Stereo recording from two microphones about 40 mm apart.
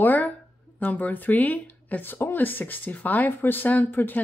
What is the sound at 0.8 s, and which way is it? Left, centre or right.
Speech, left.